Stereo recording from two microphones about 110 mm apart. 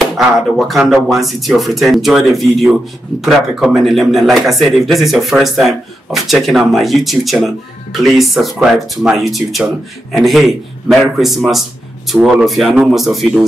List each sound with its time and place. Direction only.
0.6 s speech: centre (ahead or behind)